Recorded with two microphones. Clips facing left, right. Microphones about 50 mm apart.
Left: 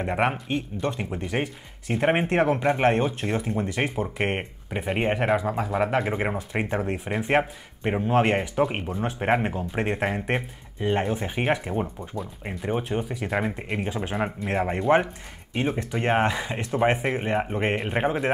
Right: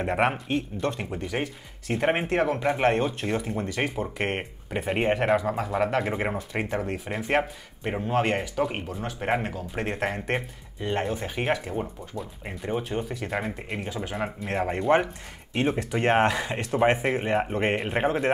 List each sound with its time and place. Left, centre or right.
0.0 s speech: centre
2.2 s speech: left
2.6 s speech: centre
9.8 s speech: centre
13.7 s speech: left
14.4 s speech: centre